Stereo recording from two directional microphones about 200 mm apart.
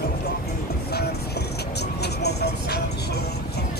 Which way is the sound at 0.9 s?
55° left (ahead or behind).